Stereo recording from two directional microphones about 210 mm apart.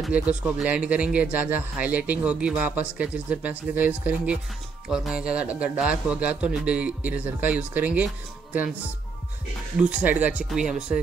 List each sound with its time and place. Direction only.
0.0 s speech: 5° right (ahead or behind)
9.8 s speech: 5° right (ahead or behind)